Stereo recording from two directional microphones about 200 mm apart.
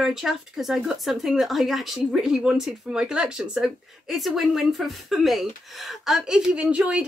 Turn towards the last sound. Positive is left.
turn(degrees=-5)  # may be behind; listen again after turning